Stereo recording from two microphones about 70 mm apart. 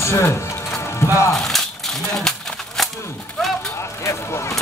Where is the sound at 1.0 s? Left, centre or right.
Left.